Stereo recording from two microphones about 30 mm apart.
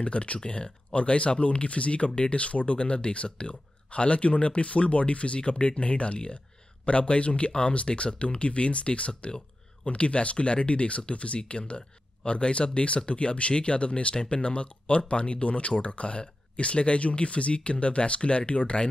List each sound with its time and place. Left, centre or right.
0.0 s speech: left